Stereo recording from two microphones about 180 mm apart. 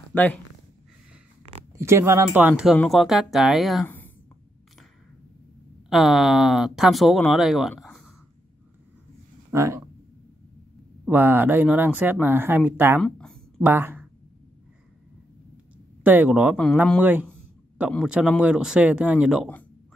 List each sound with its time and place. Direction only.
0.1 s speech: 10° left (ahead or behind)
1.8 s speech: 15° right (ahead or behind)
3.8 s a sound: 10° left (ahead or behind)
5.9 s speech: centre (ahead or behind)
7.8 s a sound: centre (ahead or behind)
9.5 s speech: 15° right (ahead or behind)
11.1 s speech: 10° right (ahead or behind)
13.0 s a sound: 5° left (ahead or behind)
13.7 s speech: 10° right (ahead or behind)
16.0 s speech: 10° right (ahead or behind)